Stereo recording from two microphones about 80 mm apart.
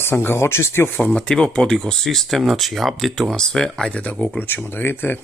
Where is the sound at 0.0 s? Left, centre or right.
Left.